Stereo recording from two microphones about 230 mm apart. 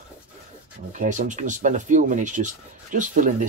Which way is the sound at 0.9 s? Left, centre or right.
Right.